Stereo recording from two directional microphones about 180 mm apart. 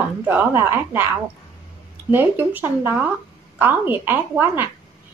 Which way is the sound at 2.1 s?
10° right (ahead or behind).